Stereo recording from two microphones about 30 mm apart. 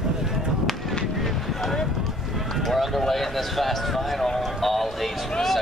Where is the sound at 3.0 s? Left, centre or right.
Centre.